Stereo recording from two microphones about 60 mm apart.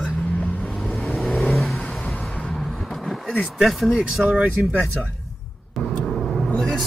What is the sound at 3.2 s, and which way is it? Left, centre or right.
Speech, centre.